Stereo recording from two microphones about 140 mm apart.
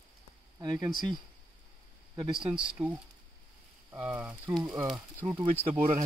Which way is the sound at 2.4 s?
5° right (ahead or behind).